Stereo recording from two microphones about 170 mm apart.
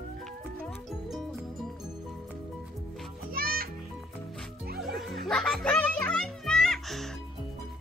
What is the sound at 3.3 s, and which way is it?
Music, 60° right (ahead or behind).